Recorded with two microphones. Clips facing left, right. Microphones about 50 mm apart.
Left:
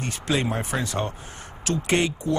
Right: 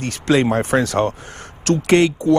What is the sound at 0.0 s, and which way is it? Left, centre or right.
A man's voice, right.